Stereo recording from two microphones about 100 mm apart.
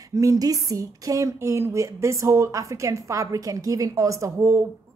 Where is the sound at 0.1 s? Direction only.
30° right (ahead or behind).